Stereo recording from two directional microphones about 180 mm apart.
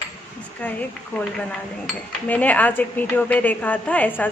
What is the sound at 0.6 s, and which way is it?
Speech, 10° left (ahead or behind).